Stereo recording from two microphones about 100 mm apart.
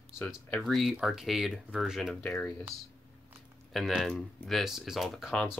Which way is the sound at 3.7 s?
Centre (ahead or behind).